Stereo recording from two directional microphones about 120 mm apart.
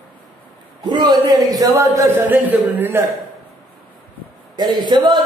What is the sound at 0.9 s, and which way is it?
A man's voice, 35° right (ahead or behind).